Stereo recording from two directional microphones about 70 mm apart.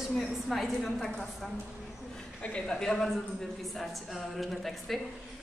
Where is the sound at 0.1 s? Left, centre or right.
Centre.